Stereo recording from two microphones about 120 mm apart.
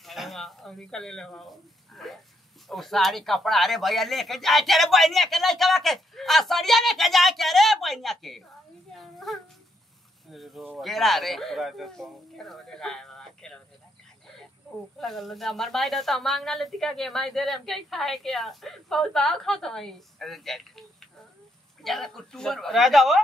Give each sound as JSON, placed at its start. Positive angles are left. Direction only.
{"t": 0.0, "sound": "speech", "side_deg": 0}
{"t": 8.9, "sound": "a sound", "side_deg": 0}
{"t": 10.3, "sound": "speech", "side_deg": 0}
{"t": 15.0, "sound": "speech", "side_deg": 0}